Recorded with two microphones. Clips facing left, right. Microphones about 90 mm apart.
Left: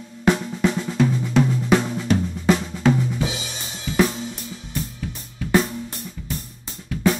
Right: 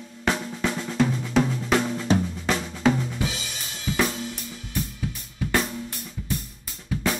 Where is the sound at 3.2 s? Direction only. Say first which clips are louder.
Left 3 dB; 20° left (ahead or behind).